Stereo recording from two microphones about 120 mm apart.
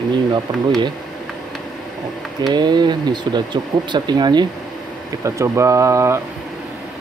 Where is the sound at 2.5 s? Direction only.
35° right (ahead or behind).